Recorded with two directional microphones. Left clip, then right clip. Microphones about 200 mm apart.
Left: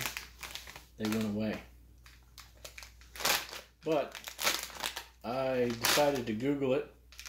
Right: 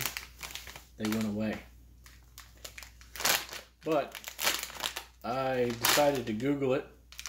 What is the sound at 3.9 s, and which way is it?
Crumpling, 5° right (ahead or behind).